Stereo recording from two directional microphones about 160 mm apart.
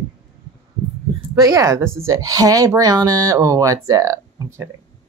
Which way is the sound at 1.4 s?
20° right (ahead or behind).